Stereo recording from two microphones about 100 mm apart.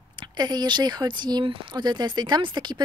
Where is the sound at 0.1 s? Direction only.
50° right (ahead or behind).